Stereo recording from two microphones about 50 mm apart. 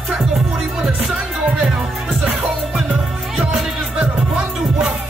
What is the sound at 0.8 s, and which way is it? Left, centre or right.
Music, centre.